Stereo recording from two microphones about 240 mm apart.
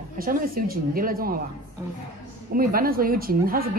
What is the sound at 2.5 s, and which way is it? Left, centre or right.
A woman's voice, right.